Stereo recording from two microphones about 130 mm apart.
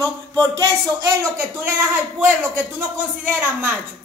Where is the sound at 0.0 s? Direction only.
10° left (ahead or behind).